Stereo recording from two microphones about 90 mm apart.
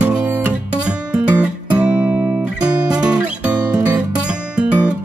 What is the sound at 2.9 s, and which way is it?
Music, 10° right (ahead or behind).